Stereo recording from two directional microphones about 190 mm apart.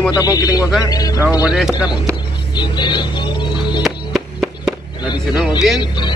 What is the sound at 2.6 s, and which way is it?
Music, 25° left (ahead or behind).